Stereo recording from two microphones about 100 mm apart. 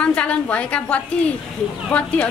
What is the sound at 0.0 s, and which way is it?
A woman's voice, 10° left (ahead or behind).